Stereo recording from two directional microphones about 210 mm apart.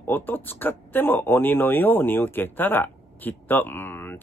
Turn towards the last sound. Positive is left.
turn(degrees=10)  # may be behind; listen again after turning